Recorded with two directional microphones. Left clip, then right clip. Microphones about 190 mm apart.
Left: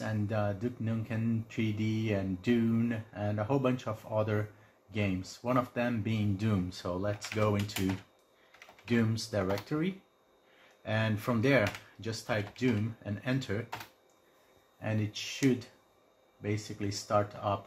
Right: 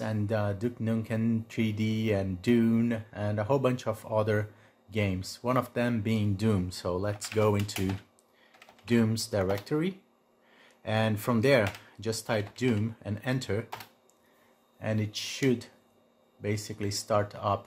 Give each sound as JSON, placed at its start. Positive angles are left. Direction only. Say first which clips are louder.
{"t": 0.0, "sound": "speech", "louder": "right 3 dB", "side_deg": -60}
{"t": 8.8, "sound": "speech", "louder": "right 4 dB", "side_deg": -60}
{"t": 14.8, "sound": "speech", "louder": "right 3 dB", "side_deg": -60}
{"t": 16.4, "sound": "speech", "louder": "right 3 dB", "side_deg": -60}